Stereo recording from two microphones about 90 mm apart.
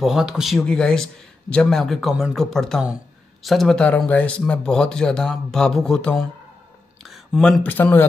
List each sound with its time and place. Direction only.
0.0 s a man's voice: 5° right (ahead or behind)
0.7 s a man's voice: 10° left (ahead or behind)
3.7 s speech: 15° left (ahead or behind)
7.0 s a sound: centre (ahead or behind)
7.6 s a man's voice: 20° left (ahead or behind)